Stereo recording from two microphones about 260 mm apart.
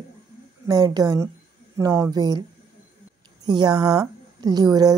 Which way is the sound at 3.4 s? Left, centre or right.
Centre.